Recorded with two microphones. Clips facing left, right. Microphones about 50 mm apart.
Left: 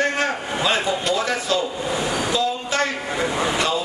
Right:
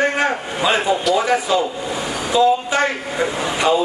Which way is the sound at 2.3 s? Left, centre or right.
Right.